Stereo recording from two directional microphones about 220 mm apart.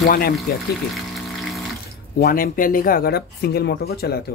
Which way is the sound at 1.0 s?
Centre (ahead or behind).